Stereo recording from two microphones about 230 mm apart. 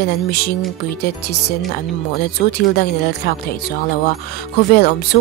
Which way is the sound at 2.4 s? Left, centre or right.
Left.